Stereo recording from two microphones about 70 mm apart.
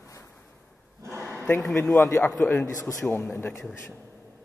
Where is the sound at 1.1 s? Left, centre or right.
Right.